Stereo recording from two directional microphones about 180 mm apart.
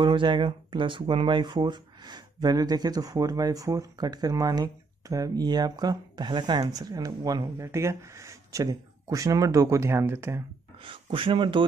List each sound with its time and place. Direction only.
0.0 s speech: 25° right (ahead or behind)
10.8 s speech: 30° right (ahead or behind)